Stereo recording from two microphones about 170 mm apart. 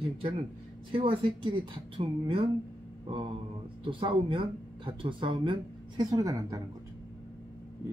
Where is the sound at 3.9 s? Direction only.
30° right (ahead or behind).